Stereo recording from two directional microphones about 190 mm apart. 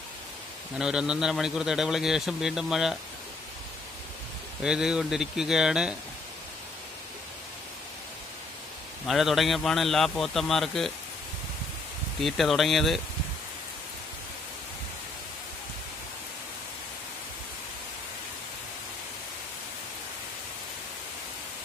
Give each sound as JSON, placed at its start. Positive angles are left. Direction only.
{"t": 0.7, "sound": "a man's voice", "side_deg": -5}
{"t": 4.6, "sound": "a man's voice", "side_deg": -5}
{"t": 9.0, "sound": "a man's voice", "side_deg": 0}
{"t": 12.2, "sound": "a man's voice", "side_deg": 0}